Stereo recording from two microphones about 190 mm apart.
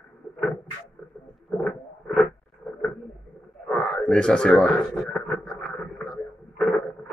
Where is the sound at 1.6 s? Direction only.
5° left (ahead or behind).